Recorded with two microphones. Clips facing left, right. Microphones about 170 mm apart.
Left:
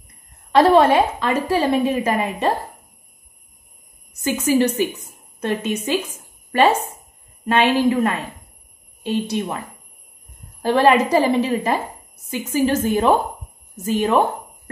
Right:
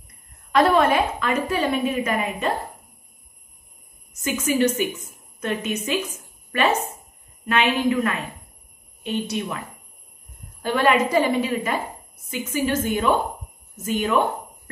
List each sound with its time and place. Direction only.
0.5 s a woman's voice: 30° left (ahead or behind)
4.2 s a woman's voice: 30° left (ahead or behind)
10.6 s a woman's voice: 35° left (ahead or behind)